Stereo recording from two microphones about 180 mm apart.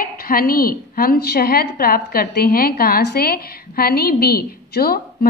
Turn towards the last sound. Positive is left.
turn(degrees=60)  # may be behind; listen again after turning